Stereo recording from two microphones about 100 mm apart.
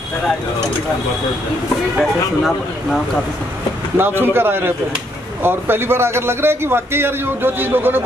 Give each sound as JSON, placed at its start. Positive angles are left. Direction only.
{"t": 2.0, "sound": "speech", "side_deg": 0}
{"t": 4.0, "sound": "a man's voice", "side_deg": -20}